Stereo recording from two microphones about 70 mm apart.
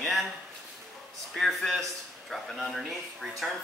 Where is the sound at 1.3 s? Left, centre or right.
Centre.